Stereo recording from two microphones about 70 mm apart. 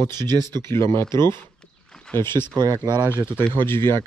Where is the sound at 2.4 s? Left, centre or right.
Right.